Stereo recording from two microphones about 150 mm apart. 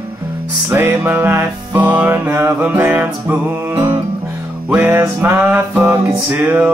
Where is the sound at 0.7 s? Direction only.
15° right (ahead or behind).